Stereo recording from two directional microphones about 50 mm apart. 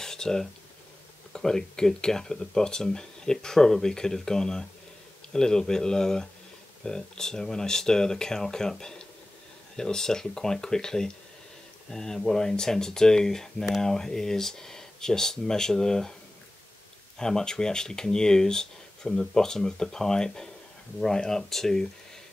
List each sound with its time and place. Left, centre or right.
0.0 s a sound: centre
1.3 s speech: centre
17.2 s speech: centre